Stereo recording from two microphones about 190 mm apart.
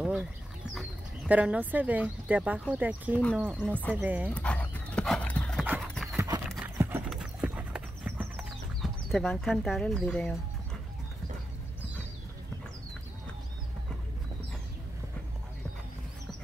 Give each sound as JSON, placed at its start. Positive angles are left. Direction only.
{"t": 0.0, "sound": "bird", "side_deg": -5}
{"t": 0.7, "sound": "speech", "side_deg": -5}
{"t": 3.5, "sound": "speech", "side_deg": 10}
{"t": 3.9, "sound": "speech", "side_deg": -10}
{"t": 4.3, "sound": "dog", "side_deg": 5}
{"t": 5.7, "sound": "horse", "side_deg": 0}
{"t": 6.1, "sound": "clip-clop", "side_deg": -15}
{"t": 7.1, "sound": "clip-clop", "side_deg": -5}